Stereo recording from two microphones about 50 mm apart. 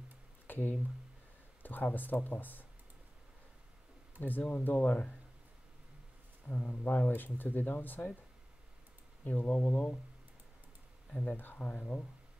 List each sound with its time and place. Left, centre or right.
0.5 s a sound: left
1.6 s speech: left
4.2 s speech: left
6.4 s speech: left
9.2 s speech: left
11.1 s speech: left
11.3 s speech: left